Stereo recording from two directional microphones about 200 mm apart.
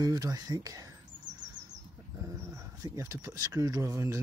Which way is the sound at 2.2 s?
15° right (ahead or behind).